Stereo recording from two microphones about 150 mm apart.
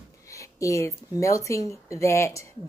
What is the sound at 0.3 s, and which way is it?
Speech, 20° left (ahead or behind).